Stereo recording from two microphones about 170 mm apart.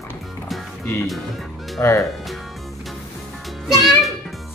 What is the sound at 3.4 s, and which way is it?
Music, centre (ahead or behind).